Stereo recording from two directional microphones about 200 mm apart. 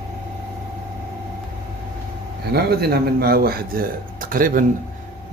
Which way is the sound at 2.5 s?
50° right (ahead or behind).